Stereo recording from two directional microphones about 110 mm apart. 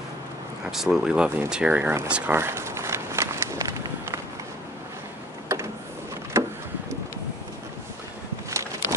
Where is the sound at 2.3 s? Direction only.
20° right (ahead or behind).